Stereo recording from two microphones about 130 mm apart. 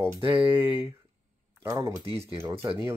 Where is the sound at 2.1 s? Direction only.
50° right (ahead or behind).